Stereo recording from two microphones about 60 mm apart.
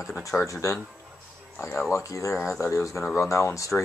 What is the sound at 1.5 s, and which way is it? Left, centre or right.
Speech, left.